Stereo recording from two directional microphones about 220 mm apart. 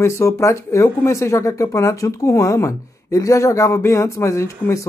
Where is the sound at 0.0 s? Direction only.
15° left (ahead or behind).